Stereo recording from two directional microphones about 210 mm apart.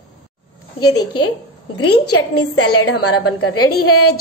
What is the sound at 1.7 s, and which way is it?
A woman's voice, 90° left.